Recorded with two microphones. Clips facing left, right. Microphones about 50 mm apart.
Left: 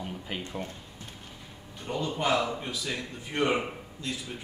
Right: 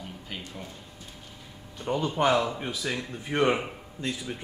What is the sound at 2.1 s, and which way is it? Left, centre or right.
Speech, right.